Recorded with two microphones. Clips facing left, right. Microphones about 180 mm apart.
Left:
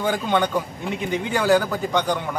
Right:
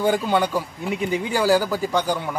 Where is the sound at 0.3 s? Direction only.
5° right (ahead or behind).